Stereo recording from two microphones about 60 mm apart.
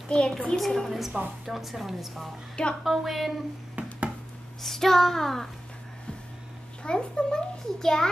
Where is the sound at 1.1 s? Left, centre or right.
Centre.